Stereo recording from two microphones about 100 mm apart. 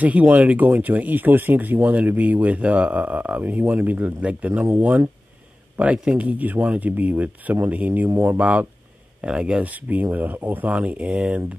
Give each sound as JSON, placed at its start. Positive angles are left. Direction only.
{"t": 0.0, "sound": "speech", "side_deg": -15}